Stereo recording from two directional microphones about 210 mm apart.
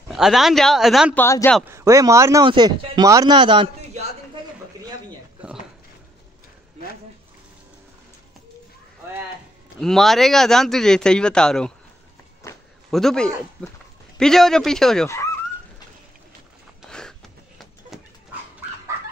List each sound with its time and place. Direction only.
0.1 s a man's voice: centre (ahead or behind)
1.1 s speech: 10° left (ahead or behind)
1.6 s speech: 15° right (ahead or behind)
9.8 s a man's voice: centre (ahead or behind)
12.9 s a man's voice: 5° left (ahead or behind)